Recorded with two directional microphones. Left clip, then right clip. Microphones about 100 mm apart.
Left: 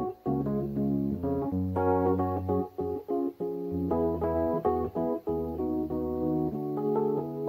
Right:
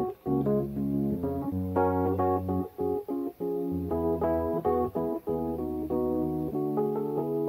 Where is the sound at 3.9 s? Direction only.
Centre (ahead or behind).